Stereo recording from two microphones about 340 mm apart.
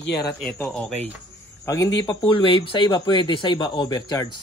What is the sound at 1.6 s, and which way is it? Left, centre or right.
Speech, centre.